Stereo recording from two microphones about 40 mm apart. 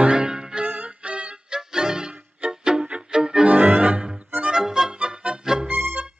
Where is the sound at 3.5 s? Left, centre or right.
Right.